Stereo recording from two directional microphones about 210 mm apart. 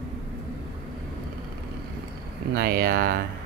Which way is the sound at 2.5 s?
45° right (ahead or behind).